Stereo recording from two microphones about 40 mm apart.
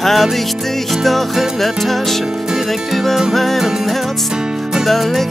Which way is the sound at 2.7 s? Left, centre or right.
Centre.